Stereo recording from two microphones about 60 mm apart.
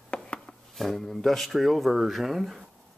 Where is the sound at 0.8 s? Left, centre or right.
Centre.